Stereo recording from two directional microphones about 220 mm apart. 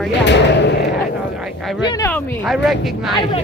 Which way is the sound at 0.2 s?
50° left (ahead or behind).